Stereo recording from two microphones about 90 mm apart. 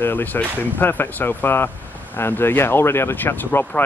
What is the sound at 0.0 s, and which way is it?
Speech, 20° left (ahead or behind).